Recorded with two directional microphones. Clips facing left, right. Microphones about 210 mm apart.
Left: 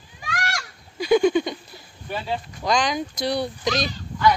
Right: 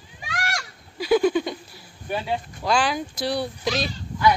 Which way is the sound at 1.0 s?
5° right (ahead or behind).